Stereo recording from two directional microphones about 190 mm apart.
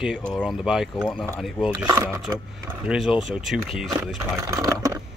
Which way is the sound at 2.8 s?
5° right (ahead or behind).